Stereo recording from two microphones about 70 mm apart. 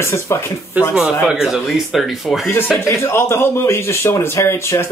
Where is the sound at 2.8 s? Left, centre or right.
Left.